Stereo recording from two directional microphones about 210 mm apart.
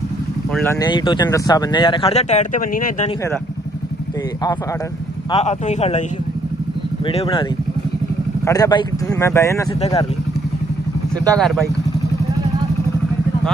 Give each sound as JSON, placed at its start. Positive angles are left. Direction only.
{"t": 0.5, "sound": "speech", "side_deg": 5}
{"t": 0.7, "sound": "speech", "side_deg": 20}
{"t": 5.3, "sound": "speech", "side_deg": 35}
{"t": 7.1, "sound": "speech", "side_deg": 25}
{"t": 8.5, "sound": "speech", "side_deg": 20}
{"t": 11.3, "sound": "speech", "side_deg": 0}